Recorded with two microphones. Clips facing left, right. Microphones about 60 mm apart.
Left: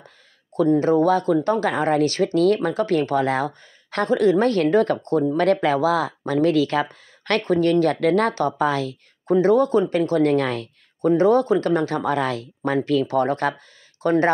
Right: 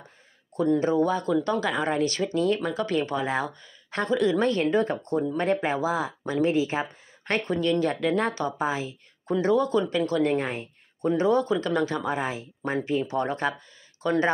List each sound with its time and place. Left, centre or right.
1.0 s speech: left
7.4 s speech: left
8.5 s speech: left
9.3 s speech: left
10.2 s speech: left
11.1 s speech: left
12.1 s speech: left
13.1 s speech: left
14.0 s speech: left